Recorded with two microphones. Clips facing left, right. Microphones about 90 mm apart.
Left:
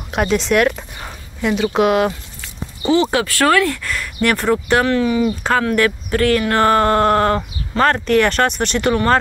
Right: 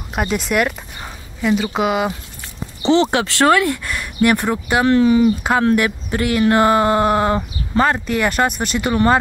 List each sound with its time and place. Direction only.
0.1 s speech: 5° right (ahead or behind)
2.8 s speech: 25° right (ahead or behind)
4.8 s speech: 25° right (ahead or behind)
5.2 s speech: 15° right (ahead or behind)